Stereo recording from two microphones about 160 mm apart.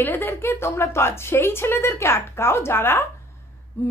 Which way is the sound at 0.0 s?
15° left (ahead or behind).